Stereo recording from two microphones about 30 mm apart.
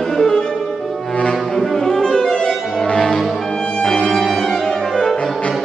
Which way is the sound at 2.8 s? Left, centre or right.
Left.